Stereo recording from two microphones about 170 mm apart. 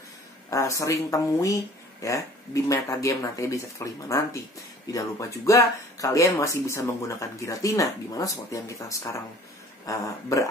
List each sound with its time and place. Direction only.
0.5 s speech: 20° left (ahead or behind)